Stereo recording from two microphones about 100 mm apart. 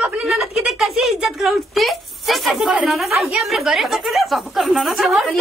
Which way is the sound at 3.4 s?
Centre (ahead or behind).